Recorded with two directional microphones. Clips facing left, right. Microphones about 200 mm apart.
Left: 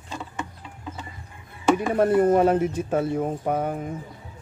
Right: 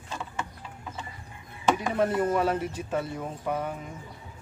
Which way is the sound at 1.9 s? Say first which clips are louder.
Left 9 dB; 50° left (ahead or behind).